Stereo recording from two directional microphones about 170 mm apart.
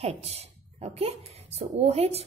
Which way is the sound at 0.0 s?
40° right (ahead or behind).